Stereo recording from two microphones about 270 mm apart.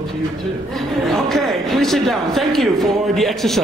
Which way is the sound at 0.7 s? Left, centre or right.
Centre.